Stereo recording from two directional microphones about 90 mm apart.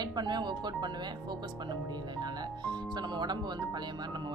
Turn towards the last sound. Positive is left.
turn(degrees=-50)  # may be behind; listen again after turning